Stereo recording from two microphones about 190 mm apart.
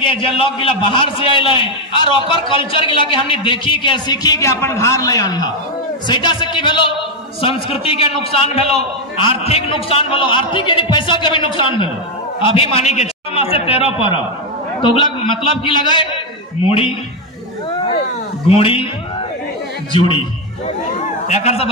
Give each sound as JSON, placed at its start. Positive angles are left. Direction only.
{"t": 0.0, "sound": "a man's voice", "side_deg": 30}
{"t": 18.5, "sound": "a man's voice", "side_deg": 30}
{"t": 19.9, "sound": "a man's voice", "side_deg": 25}